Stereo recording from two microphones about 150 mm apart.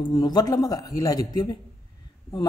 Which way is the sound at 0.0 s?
30° left (ahead or behind).